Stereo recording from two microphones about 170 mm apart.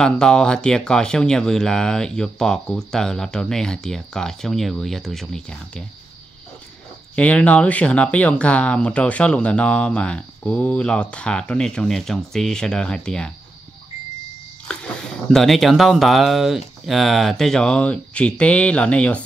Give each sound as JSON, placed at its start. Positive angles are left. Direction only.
{"t": 0.0, "sound": "speech", "side_deg": 5}
{"t": 7.2, "sound": "speech", "side_deg": 5}
{"t": 14.7, "sound": "speech", "side_deg": 5}